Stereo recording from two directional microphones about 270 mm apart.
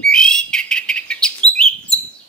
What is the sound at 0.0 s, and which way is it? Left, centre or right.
Bird, centre.